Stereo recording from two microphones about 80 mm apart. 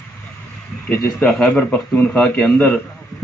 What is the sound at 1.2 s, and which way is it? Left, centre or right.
A man's voice, centre.